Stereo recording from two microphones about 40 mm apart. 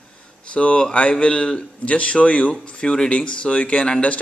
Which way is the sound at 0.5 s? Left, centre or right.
Left.